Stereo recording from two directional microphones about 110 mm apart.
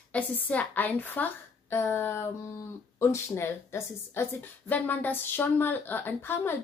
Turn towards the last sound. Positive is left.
turn(degrees=20)  # may be behind; listen again after turning